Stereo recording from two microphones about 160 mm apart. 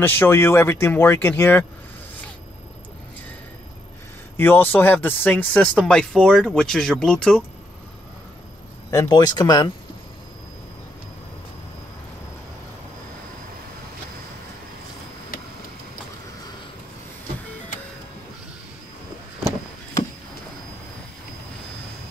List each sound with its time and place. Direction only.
0.0 s speech: 15° left (ahead or behind)
4.4 s speech: 15° left (ahead or behind)
8.9 s speech: 25° left (ahead or behind)